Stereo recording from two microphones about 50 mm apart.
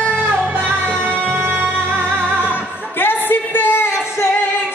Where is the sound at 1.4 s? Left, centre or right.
Right.